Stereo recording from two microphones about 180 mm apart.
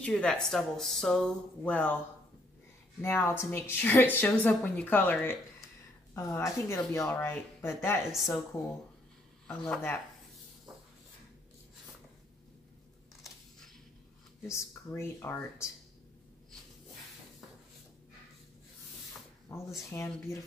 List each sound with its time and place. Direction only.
0.0 s speech: 5° left (ahead or behind)
3.0 s a woman's voice: 10° left (ahead or behind)
7.0 s a woman's voice: 5° left (ahead or behind)
8.1 s speech: centre (ahead or behind)
9.5 s speech: 5° left (ahead or behind)
14.5 s a woman's voice: 15° left (ahead or behind)
19.5 s a woman's voice: 15° left (ahead or behind)